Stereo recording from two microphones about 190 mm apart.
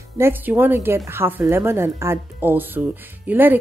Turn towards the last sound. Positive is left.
turn(degrees=-10)  # may be behind; listen again after turning